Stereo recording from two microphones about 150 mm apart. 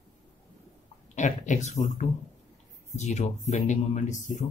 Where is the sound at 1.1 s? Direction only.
55° left (ahead or behind).